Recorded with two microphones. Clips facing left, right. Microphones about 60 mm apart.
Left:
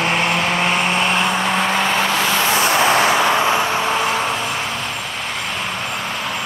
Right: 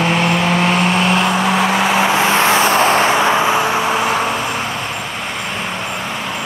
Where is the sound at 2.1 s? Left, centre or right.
Right.